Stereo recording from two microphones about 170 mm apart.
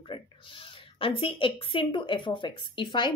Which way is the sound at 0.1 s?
30° left (ahead or behind).